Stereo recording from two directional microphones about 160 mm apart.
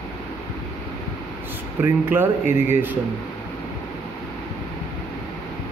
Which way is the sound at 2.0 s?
15° right (ahead or behind).